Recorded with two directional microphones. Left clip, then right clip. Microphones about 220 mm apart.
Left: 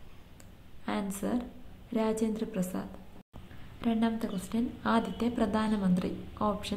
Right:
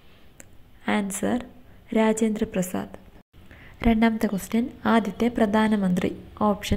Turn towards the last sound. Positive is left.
turn(degrees=-25)  # may be behind; listen again after turning